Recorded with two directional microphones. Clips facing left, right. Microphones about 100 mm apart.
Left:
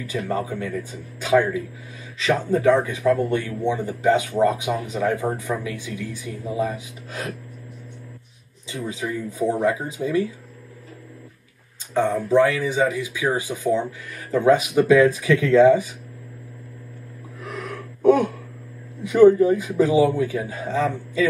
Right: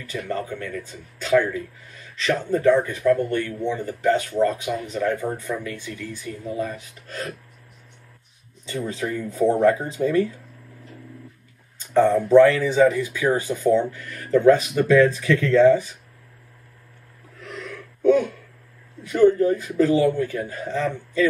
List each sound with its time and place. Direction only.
0.1 s speech: 15° left (ahead or behind)
8.6 s speech: 10° left (ahead or behind)
11.9 s speech: 10° left (ahead or behind)
17.5 s gasp: 55° left (ahead or behind)
19.1 s speech: 10° left (ahead or behind)